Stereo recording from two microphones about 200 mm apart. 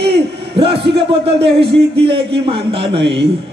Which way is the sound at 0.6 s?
25° right (ahead or behind).